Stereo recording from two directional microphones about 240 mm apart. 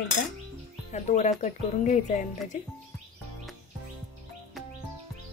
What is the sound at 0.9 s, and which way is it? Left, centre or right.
Speech, left.